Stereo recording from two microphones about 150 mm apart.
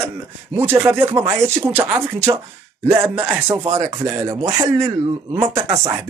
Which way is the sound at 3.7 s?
20° right (ahead or behind).